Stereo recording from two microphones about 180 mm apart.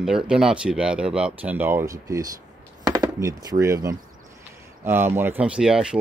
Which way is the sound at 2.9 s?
20° right (ahead or behind).